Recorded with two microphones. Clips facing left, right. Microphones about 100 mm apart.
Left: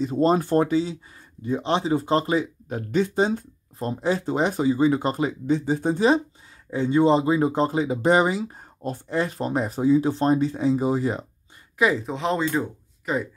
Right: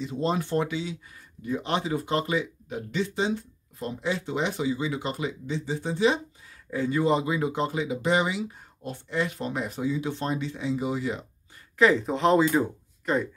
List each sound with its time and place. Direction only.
0.0 s speech: 40° left (ahead or behind)
6.7 s speech: 25° left (ahead or behind)
11.8 s speech: centre (ahead or behind)